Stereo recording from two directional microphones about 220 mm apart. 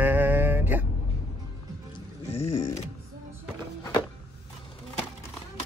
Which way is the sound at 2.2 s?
25° left (ahead or behind).